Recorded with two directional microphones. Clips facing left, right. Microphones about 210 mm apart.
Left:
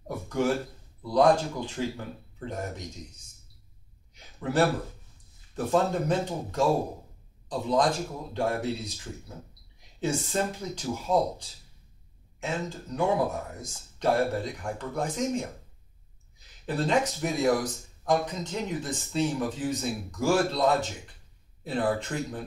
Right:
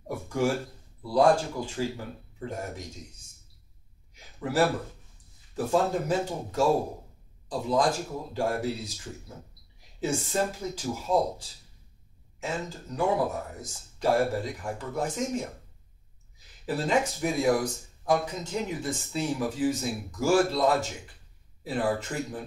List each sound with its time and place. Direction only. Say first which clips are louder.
1.0 s speech: even; 10° right (ahead or behind)
4.1 s a sound: left 1 dB; 5° right (ahead or behind)
5.7 s speech: left 1 dB; 5° right (ahead or behind)
16.6 s speech: even; 5° right (ahead or behind)